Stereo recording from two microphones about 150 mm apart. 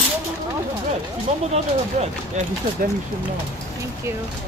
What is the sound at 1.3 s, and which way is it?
Speech, 50° right (ahead or behind).